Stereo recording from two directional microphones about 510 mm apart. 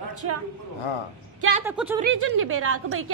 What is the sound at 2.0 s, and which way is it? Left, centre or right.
Speech, right.